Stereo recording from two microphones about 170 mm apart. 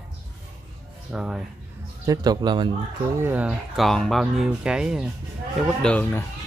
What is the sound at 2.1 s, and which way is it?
Speech, 25° right (ahead or behind).